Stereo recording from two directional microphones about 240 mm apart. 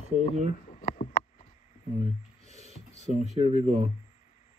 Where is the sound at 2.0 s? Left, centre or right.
Right.